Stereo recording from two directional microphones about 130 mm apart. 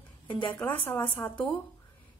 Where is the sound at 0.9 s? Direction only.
35° left (ahead or behind).